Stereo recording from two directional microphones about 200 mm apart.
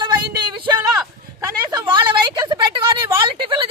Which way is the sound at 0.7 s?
15° right (ahead or behind).